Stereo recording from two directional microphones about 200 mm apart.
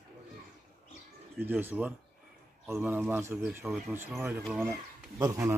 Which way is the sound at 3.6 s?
Centre (ahead or behind).